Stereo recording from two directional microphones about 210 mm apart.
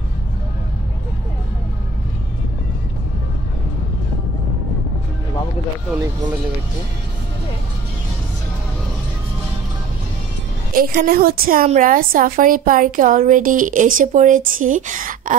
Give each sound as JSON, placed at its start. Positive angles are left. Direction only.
{"t": 10.7, "sound": "a woman's voice", "side_deg": -45}